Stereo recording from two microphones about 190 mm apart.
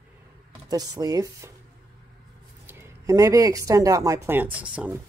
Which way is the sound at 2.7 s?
15° right (ahead or behind).